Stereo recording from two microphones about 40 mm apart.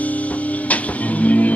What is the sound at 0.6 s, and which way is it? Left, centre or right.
Music, left.